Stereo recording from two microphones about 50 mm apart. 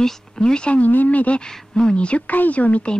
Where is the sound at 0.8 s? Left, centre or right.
Left.